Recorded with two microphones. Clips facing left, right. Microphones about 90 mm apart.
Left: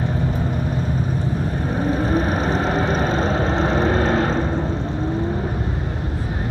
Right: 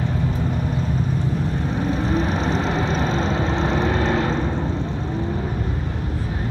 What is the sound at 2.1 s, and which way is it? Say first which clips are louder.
Vehicle: left 2 dB; 45° left (ahead or behind).